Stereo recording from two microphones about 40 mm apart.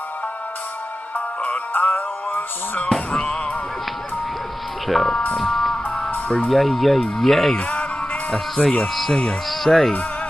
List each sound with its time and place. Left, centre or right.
1.1 s music: left
4.8 s speech: centre
5.4 s music: centre
5.9 s music: left
6.5 s speech: centre